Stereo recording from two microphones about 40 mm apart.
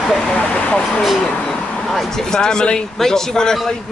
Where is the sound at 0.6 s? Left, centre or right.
Left.